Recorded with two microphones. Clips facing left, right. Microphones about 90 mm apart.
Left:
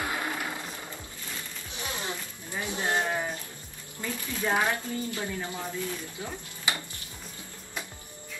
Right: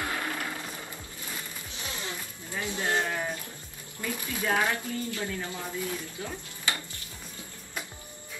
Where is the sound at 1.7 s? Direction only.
20° left (ahead or behind).